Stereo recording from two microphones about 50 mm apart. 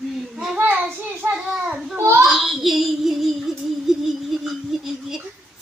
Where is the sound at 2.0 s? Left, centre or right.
Right.